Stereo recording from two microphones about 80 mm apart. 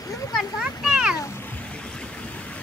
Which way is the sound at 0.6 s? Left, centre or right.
Centre.